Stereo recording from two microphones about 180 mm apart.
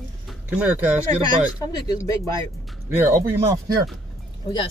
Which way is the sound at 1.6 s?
20° left (ahead or behind).